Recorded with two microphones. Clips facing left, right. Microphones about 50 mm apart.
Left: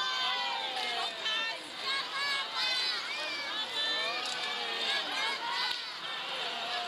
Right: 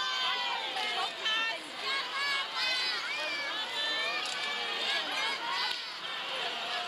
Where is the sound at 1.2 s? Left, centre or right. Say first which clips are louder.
Right 2 dB; centre.